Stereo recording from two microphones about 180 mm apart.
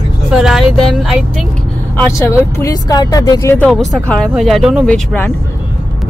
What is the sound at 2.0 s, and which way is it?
Speech, 15° left (ahead or behind).